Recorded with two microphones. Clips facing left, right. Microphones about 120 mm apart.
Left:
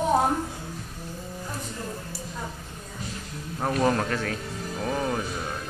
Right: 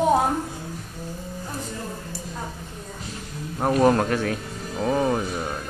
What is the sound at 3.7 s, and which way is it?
Speech, 10° right (ahead or behind).